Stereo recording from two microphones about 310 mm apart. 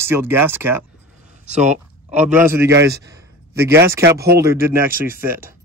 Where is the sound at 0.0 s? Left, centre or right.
Centre.